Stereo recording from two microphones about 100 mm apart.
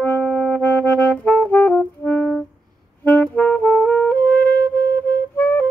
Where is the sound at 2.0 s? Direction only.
15° left (ahead or behind).